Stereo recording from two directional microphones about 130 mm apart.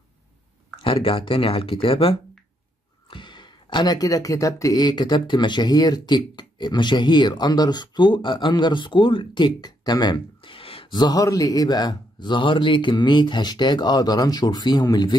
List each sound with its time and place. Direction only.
0.7 s speech: 45° left (ahead or behind)